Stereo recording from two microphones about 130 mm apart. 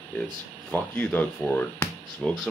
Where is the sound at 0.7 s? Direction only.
15° left (ahead or behind).